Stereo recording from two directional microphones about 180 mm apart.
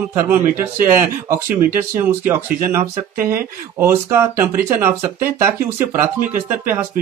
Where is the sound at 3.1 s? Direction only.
50° right (ahead or behind).